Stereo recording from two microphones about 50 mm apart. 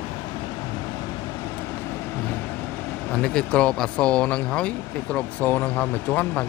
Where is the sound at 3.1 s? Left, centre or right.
Centre.